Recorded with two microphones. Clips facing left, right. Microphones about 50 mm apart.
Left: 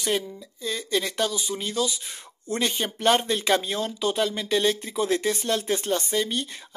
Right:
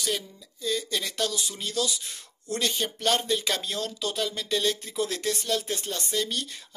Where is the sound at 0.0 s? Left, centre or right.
Left.